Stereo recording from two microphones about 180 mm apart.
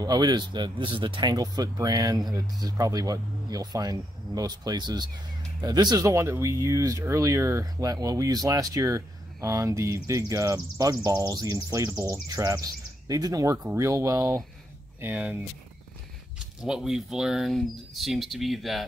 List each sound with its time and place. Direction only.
0.0 s speech: 20° right (ahead or behind)
16.6 s speech: 5° right (ahead or behind)